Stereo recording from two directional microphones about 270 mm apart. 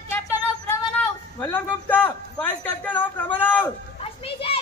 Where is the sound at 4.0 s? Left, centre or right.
Left.